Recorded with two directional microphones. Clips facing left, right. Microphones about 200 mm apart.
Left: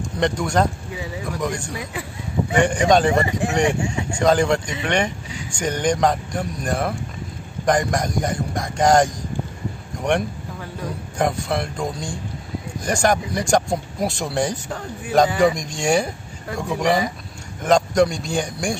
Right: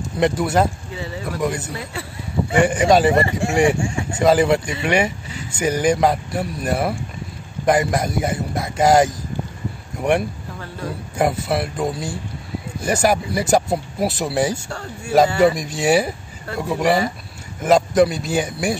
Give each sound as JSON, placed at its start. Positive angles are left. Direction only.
{"t": 0.0, "sound": "speech", "side_deg": -5}
{"t": 0.9, "sound": "speech", "side_deg": 15}
{"t": 1.2, "sound": "speech", "side_deg": -5}
{"t": 1.7, "sound": "speech", "side_deg": 15}
{"t": 2.5, "sound": "speech", "side_deg": -5}
{"t": 14.5, "sound": "speech", "side_deg": 15}
{"t": 15.4, "sound": "speech", "side_deg": -5}